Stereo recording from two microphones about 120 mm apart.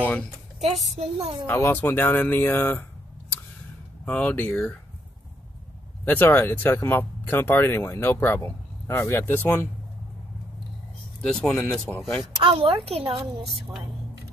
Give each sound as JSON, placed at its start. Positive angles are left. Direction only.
{"t": 0.0, "sound": "speech", "side_deg": 15}
{"t": 0.6, "sound": "speech", "side_deg": 0}
{"t": 0.9, "sound": "speech", "side_deg": -55}
{"t": 1.5, "sound": "speech", "side_deg": 15}
{"t": 4.0, "sound": "speech", "side_deg": 15}
{"t": 6.0, "sound": "speech", "side_deg": 15}
{"t": 11.1, "sound": "speech", "side_deg": 5}
{"t": 12.4, "sound": "speech", "side_deg": -50}